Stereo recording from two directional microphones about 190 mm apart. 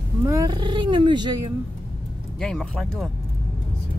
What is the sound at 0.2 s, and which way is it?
Speech, 15° right (ahead or behind).